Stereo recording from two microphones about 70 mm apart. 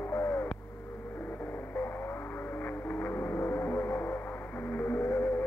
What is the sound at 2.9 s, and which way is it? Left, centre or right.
Music, left.